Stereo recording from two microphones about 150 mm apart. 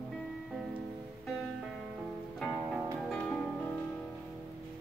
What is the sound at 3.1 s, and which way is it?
Music, 5° left (ahead or behind).